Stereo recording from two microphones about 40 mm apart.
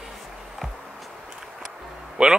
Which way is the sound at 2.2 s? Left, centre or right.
Right.